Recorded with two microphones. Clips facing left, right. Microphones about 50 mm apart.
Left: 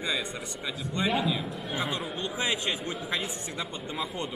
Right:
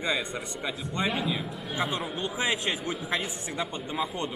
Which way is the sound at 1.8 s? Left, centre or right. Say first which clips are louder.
Right 3 dB; centre.